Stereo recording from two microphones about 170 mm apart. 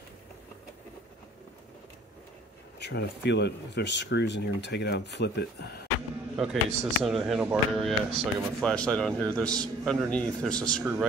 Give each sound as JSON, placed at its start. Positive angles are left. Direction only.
{"t": 2.8, "sound": "speech", "side_deg": 85}
{"t": 6.3, "sound": "speech", "side_deg": -5}
{"t": 10.8, "sound": "a man's voice", "side_deg": -5}